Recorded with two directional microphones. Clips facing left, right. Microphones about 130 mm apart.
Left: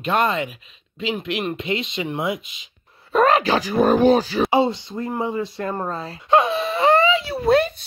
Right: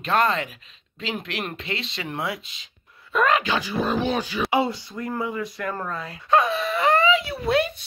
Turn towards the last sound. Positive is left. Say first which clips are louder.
# left 5 dB
turn(degrees=40)  # may be behind; listen again after turning